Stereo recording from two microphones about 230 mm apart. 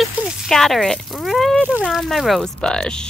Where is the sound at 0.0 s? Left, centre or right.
Centre.